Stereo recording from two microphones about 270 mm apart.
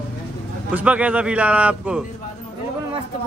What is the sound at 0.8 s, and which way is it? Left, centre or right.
A man's voice, centre.